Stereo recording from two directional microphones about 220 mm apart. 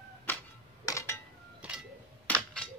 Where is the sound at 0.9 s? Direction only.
15° left (ahead or behind).